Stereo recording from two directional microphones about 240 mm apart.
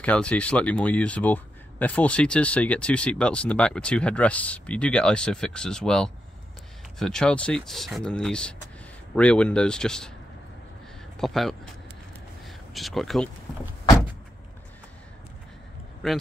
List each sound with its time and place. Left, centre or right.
0.0 s speech: centre
11.1 s speech: centre